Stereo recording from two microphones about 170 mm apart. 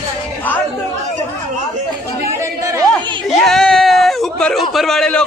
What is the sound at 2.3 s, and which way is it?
Chatter, 20° right (ahead or behind).